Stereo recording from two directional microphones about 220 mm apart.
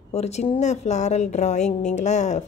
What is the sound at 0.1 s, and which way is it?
A woman's voice, 30° left (ahead or behind).